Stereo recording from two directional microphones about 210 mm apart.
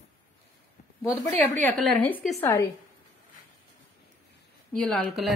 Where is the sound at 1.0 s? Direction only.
15° left (ahead or behind).